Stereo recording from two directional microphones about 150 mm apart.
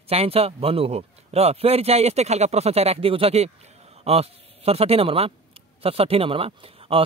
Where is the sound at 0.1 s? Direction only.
40° right (ahead or behind).